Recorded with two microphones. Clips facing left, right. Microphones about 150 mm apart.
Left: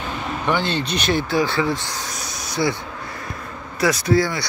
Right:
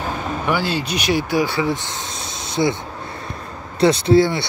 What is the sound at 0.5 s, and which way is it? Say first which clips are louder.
Speech: even; 10° right (ahead or behind).